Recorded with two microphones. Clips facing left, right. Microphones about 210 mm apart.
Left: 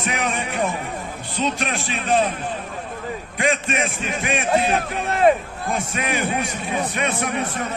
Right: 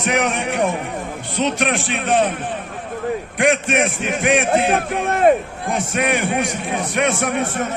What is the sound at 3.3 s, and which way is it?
A man's voice, 70° right (ahead or behind).